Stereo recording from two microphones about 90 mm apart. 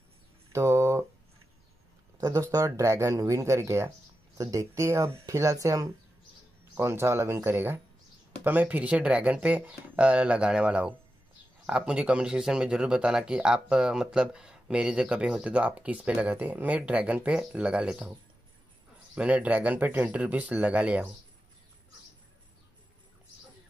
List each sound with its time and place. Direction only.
0.5 s speech: 30° right (ahead or behind)
2.1 s speech: 40° right (ahead or behind); by 18.1 s 10° right (ahead or behind)
19.1 s speech: 15° right (ahead or behind)